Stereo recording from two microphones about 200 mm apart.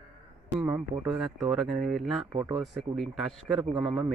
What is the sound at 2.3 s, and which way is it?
Speech, 30° right (ahead or behind).